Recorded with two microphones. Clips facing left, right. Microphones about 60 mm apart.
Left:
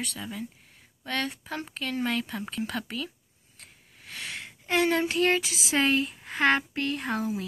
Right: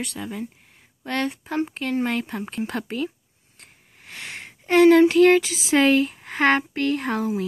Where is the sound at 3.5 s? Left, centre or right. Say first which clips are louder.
Right 2 dB; right.